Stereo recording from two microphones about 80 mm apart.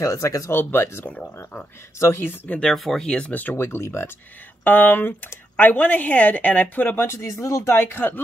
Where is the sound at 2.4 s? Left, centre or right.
Centre.